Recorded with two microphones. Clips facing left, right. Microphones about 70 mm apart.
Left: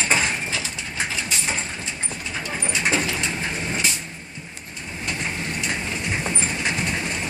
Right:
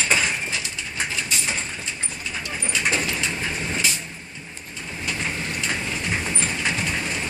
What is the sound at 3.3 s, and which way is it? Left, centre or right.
Vehicle, centre.